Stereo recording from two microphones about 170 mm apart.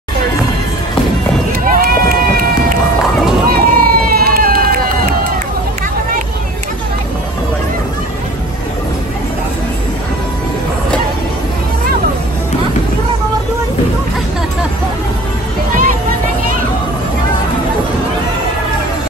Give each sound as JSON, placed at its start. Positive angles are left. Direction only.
{"t": 1.7, "sound": "run", "side_deg": -60}
{"t": 3.4, "sound": "run", "side_deg": -60}